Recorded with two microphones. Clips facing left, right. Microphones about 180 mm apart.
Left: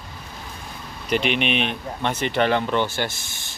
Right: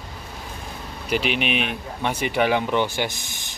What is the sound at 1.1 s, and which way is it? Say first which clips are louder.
Speech: left 1 dB; 5° right (ahead or behind).